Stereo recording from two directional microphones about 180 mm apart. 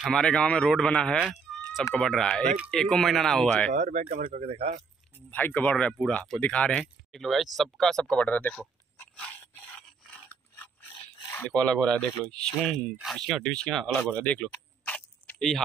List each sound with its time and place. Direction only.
0.0 s speech: 5° left (ahead or behind)
3.7 s speech: 40° right (ahead or behind)
5.3 s speech: 10° left (ahead or behind)
9.1 s rub: 5° left (ahead or behind)
11.3 s speech: 10° left (ahead or behind)